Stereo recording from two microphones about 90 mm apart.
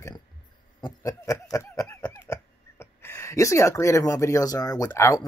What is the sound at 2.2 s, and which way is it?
Speech, 30° left (ahead or behind).